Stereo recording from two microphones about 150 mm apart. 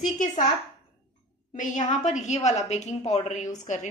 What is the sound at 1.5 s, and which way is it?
A woman's voice, 55° left (ahead or behind).